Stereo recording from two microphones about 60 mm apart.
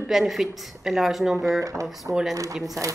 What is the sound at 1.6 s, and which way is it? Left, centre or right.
Speech, right.